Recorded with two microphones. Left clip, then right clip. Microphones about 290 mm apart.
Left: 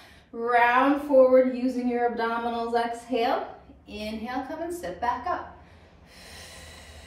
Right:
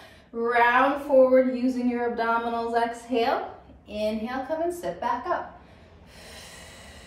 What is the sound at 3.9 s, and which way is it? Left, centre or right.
Speech, centre.